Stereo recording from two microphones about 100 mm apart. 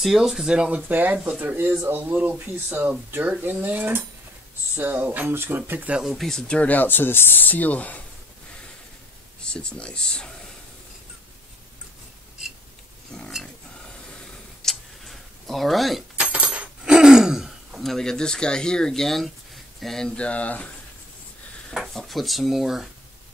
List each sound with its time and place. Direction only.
0.0 s speech: 5° right (ahead or behind)
6.1 s speech: 5° left (ahead or behind)
9.4 s speech: 10° left (ahead or behind)
13.1 s speech: centre (ahead or behind)
14.6 s tick-tock: centre (ahead or behind)
16.2 s keys jangling: 10° right (ahead or behind); by 20.7 s 15° left (ahead or behind)
21.6 s speech: centre (ahead or behind)